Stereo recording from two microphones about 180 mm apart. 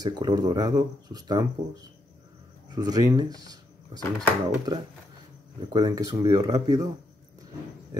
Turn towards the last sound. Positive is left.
turn(degrees=-20)  # may be behind; listen again after turning